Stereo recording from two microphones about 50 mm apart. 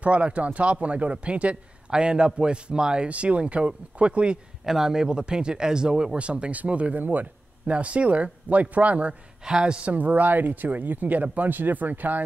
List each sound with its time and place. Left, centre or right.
0.0 s a man's voice: right
4.6 s a man's voice: centre; by 7.7 s right
7.7 s a man's voice: right
9.4 s a man's voice: centre; by 12.2 s right